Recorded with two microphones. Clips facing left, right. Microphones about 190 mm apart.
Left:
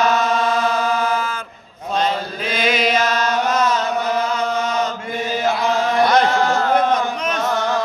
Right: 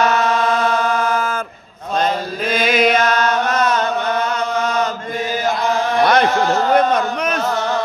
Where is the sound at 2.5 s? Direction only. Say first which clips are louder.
Right 3 dB; 50° right (ahead or behind).